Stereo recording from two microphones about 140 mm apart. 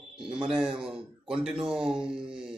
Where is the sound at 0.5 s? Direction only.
5° right (ahead or behind).